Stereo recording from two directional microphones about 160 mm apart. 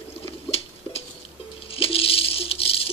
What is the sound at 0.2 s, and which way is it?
Rodents, 40° left (ahead or behind).